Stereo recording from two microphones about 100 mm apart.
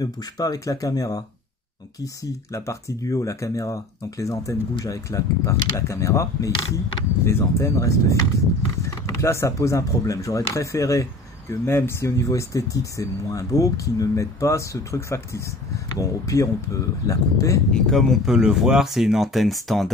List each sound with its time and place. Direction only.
0.0 s speech: 40° left (ahead or behind)
2.5 s speech: 30° left (ahead or behind)
17.7 s speech: 5° left (ahead or behind)